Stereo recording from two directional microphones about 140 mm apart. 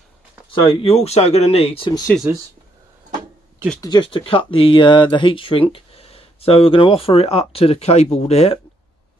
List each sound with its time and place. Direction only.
0.5 s speech: 40° left (ahead or behind)
2.3 s speech: 15° right (ahead or behind)
3.8 s speech: 35° left (ahead or behind)